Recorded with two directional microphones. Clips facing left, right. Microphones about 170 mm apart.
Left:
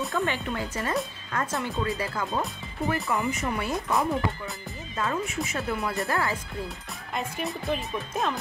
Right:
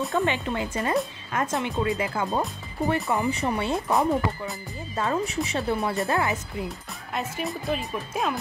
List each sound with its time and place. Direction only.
0.1 s speech: 20° right (ahead or behind)
6.0 s speech: 20° right (ahead or behind)
7.1 s speech: centre (ahead or behind)